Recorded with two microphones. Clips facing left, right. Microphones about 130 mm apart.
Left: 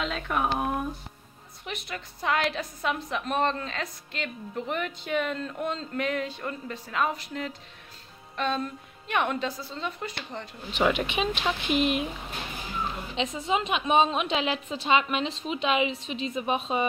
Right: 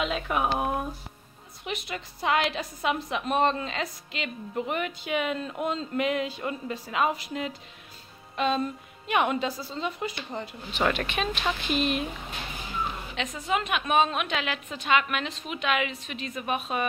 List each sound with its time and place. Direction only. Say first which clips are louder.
0.0 s a woman's voice: right 1 dB; 10° right (ahead or behind)
10.8 s speech: left 2 dB; 15° left (ahead or behind)
13.1 s a woman's voice: left 2 dB; 30° left (ahead or behind)